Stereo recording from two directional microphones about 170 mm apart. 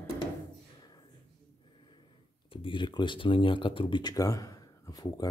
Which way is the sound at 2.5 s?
30° left (ahead or behind).